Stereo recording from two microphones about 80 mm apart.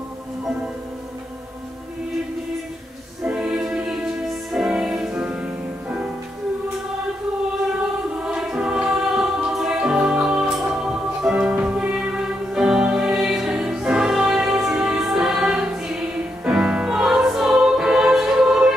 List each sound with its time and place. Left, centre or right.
3.3 s music: centre
8.2 s music: centre